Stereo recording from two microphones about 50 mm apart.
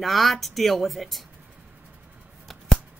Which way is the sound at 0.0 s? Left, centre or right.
Centre.